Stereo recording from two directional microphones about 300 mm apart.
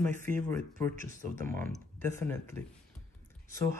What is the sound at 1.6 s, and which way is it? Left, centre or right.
Speech, centre.